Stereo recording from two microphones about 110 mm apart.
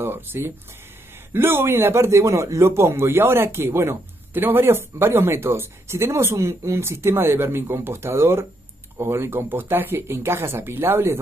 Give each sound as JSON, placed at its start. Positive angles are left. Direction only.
{"t": 0.0, "sound": "a man's voice", "side_deg": -20}